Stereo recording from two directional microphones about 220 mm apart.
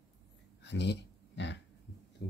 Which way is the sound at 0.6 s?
50° left (ahead or behind).